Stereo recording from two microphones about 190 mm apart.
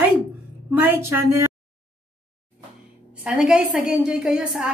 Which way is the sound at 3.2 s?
5° right (ahead or behind).